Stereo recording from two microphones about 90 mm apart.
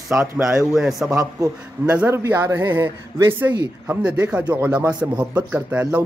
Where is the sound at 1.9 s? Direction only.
15° right (ahead or behind).